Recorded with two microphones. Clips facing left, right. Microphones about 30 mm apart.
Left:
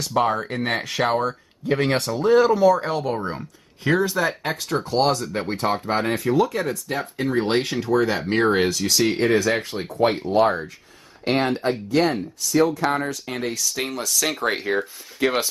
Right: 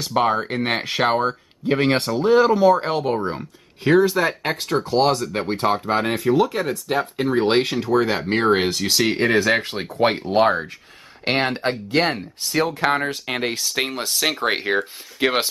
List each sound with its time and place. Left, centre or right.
0.0 s speech: right
5.9 s speech: centre
8.6 s speech: right
9.8 s speech: right
10.2 s speech: right